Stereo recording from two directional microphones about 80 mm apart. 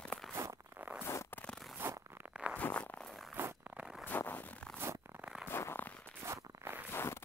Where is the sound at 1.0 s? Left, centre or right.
Left.